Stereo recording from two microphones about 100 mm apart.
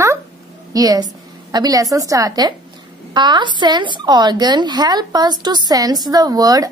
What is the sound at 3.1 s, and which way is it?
A woman's voice, 50° right (ahead or behind).